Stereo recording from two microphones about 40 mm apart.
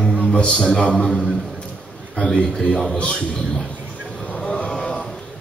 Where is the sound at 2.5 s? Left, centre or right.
Centre.